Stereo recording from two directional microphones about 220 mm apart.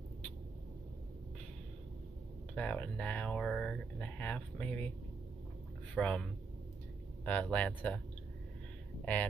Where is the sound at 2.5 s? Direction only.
5° left (ahead or behind).